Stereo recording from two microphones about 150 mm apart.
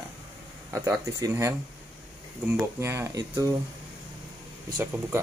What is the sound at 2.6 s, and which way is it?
Speech, 15° right (ahead or behind).